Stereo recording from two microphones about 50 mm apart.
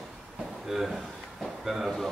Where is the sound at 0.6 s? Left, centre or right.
Centre.